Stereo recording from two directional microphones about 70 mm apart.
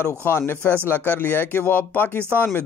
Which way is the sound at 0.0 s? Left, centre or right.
Left.